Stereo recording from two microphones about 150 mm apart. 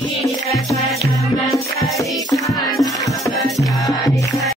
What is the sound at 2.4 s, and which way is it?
Music, 20° left (ahead or behind).